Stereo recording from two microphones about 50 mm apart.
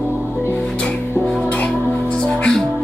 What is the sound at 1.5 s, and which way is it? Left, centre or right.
Music, left.